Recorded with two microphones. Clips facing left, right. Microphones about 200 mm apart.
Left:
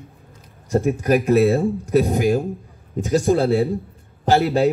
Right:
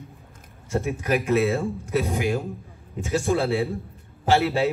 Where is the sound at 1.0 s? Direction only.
45° left (ahead or behind).